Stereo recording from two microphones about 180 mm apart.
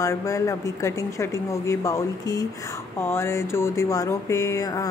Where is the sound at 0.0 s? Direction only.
15° left (ahead or behind).